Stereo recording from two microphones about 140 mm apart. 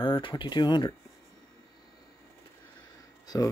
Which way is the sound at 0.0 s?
35° left (ahead or behind).